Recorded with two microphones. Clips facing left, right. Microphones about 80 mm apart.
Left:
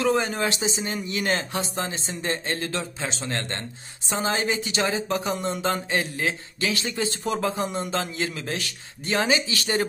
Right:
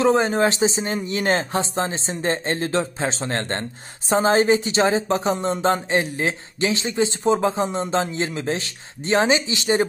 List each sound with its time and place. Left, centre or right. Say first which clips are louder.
0.0 s speech: right 6 dB; right